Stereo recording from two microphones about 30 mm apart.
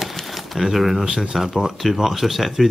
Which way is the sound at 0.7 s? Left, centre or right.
Centre.